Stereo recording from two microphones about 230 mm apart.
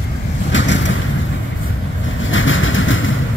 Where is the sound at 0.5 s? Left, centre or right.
Left.